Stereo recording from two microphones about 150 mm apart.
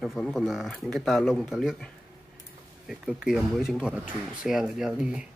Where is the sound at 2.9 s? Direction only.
Centre (ahead or behind).